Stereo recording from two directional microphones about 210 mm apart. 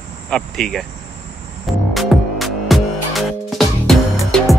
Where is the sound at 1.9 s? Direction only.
Centre (ahead or behind).